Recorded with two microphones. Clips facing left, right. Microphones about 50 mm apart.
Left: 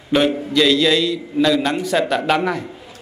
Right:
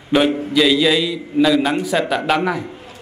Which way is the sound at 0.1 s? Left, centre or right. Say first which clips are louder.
Right 1 dB; centre.